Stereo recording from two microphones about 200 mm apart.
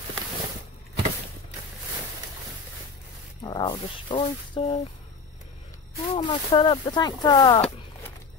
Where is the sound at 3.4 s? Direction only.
20° left (ahead or behind).